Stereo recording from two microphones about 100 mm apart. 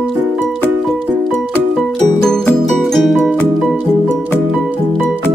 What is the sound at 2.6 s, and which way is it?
Music, centre (ahead or behind).